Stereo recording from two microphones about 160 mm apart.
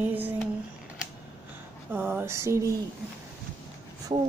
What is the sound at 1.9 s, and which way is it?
Speech, 15° right (ahead or behind).